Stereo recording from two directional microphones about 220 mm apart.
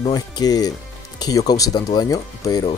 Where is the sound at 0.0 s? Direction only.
15° left (ahead or behind).